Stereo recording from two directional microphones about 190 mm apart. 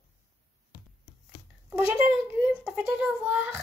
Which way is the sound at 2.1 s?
5° right (ahead or behind).